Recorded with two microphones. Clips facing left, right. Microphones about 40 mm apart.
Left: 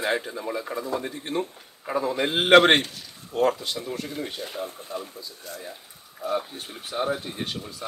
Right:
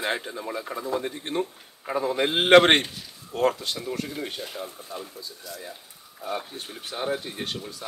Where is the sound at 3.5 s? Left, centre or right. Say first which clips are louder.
Left 1 dB; right.